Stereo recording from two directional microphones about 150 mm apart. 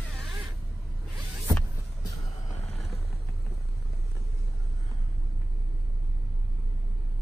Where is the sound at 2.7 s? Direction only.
45° left (ahead or behind).